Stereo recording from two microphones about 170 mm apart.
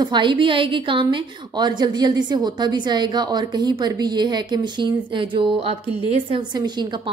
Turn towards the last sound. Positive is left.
turn(degrees=-30)  # may be behind; listen again after turning